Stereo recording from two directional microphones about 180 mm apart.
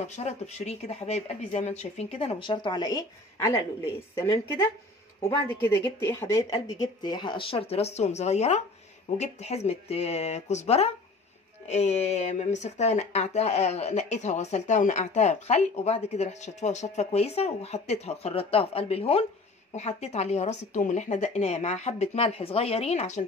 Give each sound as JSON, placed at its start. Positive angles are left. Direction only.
{"t": 0.0, "sound": "a woman's voice", "side_deg": 35}